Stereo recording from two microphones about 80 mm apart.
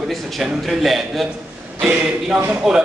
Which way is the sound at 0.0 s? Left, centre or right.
Centre.